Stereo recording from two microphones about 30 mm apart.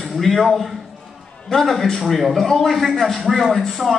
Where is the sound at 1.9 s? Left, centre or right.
Centre.